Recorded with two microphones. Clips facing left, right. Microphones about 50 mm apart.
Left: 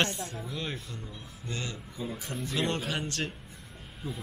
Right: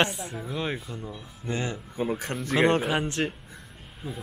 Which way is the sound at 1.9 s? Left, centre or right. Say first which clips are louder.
Right 12 dB; right.